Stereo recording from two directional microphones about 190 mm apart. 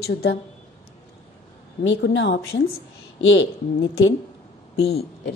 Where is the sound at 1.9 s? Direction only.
65° left (ahead or behind).